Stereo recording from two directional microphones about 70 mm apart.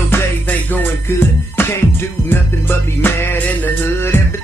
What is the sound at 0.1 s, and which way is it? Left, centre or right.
Music, left.